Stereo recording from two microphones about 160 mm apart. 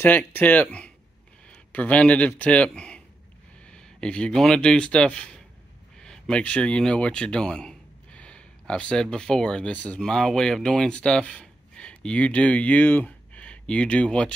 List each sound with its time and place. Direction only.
0.0 s speech: 10° left (ahead or behind)